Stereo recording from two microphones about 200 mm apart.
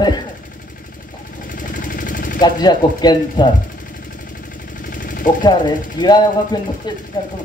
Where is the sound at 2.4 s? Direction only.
20° left (ahead or behind).